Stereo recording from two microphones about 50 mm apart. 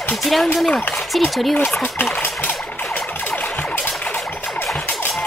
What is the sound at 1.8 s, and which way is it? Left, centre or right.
Speech, left.